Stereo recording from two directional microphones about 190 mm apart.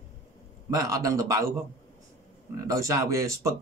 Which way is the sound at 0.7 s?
20° right (ahead or behind).